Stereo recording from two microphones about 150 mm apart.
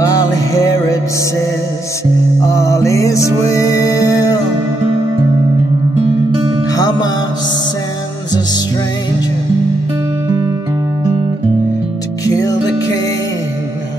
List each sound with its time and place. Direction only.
2.4 s music: 20° left (ahead or behind)
6.7 s music: 25° left (ahead or behind)
12.3 s music: 25° left (ahead or behind)